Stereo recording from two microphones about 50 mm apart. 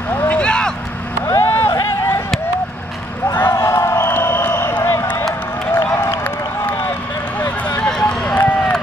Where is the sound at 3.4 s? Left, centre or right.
Left.